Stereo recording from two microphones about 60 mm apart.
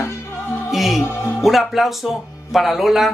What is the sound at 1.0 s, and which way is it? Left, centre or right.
Speech, left.